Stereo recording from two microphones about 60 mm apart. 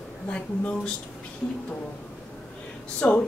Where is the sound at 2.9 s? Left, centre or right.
Left.